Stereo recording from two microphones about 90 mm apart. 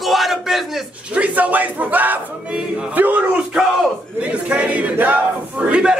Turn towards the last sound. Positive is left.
turn(degrees=-15)  # may be behind; listen again after turning